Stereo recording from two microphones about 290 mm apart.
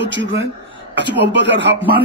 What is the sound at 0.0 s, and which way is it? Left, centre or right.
A man's voice, right.